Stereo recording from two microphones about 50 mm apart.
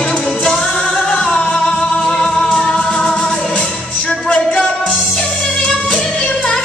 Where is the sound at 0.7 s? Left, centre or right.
Left.